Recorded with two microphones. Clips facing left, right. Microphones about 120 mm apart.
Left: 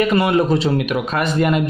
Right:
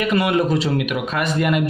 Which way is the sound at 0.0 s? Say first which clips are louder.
Left 3 dB; 30° left (ahead or behind).